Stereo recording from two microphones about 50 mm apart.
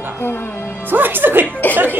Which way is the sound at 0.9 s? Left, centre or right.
Right.